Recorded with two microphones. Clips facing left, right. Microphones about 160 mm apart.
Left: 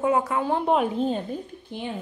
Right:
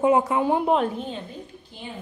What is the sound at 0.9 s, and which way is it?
Speech, 40° left (ahead or behind).